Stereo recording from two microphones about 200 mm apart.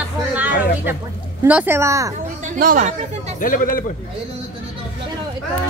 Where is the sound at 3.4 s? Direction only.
45° left (ahead or behind).